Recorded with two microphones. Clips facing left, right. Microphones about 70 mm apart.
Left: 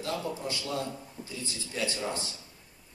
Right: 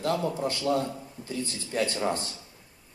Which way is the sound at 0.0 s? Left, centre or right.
Right.